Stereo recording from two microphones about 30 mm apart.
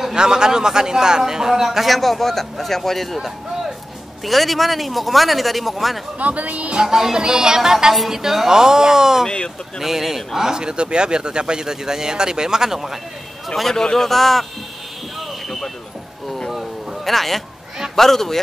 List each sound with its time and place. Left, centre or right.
0.1 s speech: right
1.9 s a man's voice: centre
6.1 s speech: right
6.7 s speech: right
10.6 s speech: right; by 13.0 s centre
13.7 s speech: left
14.0 s a man's voice: centre
17.0 s a man's voice: centre